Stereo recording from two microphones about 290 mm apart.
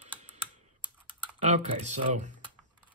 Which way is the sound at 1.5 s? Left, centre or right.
Right.